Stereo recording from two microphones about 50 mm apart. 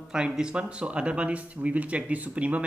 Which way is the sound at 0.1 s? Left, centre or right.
Centre.